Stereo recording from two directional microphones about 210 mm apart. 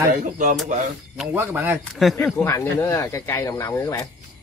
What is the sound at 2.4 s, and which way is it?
Speech, 15° left (ahead or behind).